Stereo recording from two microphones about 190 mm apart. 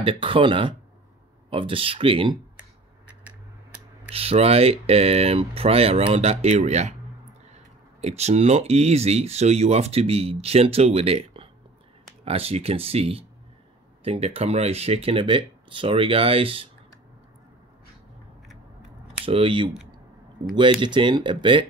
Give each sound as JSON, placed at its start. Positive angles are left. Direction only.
{"t": 0.0, "sound": "speech", "side_deg": -25}
{"t": 4.1, "sound": "speech", "side_deg": -30}
{"t": 19.2, "sound": "speech", "side_deg": -30}